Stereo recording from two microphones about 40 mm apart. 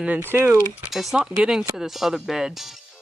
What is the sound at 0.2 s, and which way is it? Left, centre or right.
Speech, right.